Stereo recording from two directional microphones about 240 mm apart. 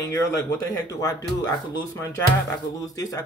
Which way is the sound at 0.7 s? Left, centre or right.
Centre.